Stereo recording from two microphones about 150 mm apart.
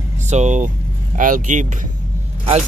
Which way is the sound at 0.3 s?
50° right (ahead or behind).